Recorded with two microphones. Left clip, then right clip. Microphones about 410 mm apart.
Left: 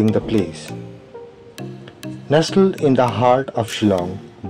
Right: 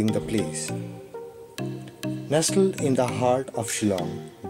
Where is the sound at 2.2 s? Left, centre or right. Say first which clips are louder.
Left 7 dB; right.